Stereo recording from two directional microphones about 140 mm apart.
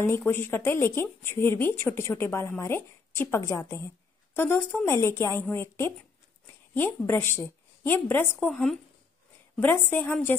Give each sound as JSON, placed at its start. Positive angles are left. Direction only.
{"t": 0.0, "sound": "a woman's voice", "side_deg": 15}
{"t": 8.5, "sound": "speech", "side_deg": 5}